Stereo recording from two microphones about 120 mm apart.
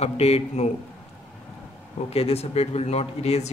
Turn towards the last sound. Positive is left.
turn(degrees=60)  # may be behind; listen again after turning